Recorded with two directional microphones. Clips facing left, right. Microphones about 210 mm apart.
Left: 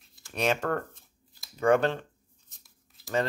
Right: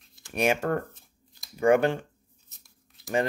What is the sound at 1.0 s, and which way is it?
Shuffling cards, 5° left (ahead or behind).